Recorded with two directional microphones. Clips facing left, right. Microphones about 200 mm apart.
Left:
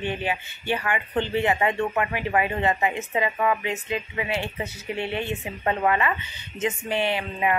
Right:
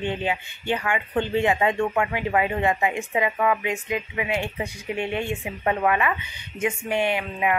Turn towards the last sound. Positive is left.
turn(degrees=-15)  # may be behind; listen again after turning